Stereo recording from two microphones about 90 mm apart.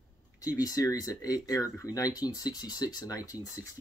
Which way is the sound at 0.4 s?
40° left (ahead or behind).